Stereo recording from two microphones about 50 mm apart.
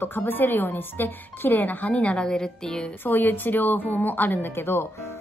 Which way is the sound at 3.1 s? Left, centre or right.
Left.